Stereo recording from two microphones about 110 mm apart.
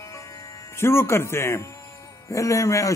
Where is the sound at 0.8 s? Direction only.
25° left (ahead or behind).